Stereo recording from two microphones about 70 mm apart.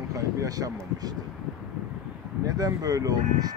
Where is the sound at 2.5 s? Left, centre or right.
Right.